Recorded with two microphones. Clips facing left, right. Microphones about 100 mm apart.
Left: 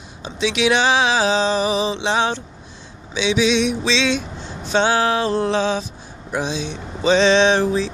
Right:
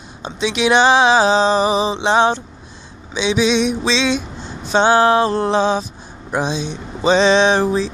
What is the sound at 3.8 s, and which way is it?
Speech, 15° right (ahead or behind).